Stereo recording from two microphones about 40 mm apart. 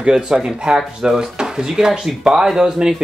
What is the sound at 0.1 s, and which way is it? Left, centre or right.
Speech, centre.